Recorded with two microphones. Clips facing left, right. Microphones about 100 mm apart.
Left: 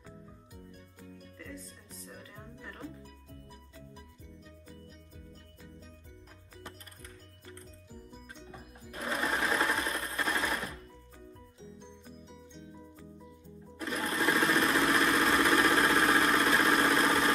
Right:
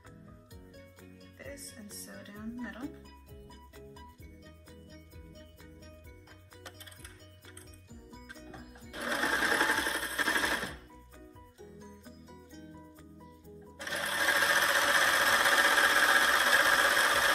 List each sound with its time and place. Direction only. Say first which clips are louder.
1.4 s speech: right 2 dB; 30° right (ahead or behind)
9.0 s sewing machine: even; 30° right (ahead or behind)
13.7 s sewing machine: left 3 dB; 25° right (ahead or behind)
14.1 s engine: left 2 dB; 30° right (ahead or behind)